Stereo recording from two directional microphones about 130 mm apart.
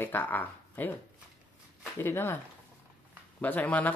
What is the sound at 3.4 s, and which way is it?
Speech, 15° left (ahead or behind).